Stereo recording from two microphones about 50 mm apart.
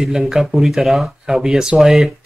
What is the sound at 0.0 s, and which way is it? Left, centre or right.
Speech, centre.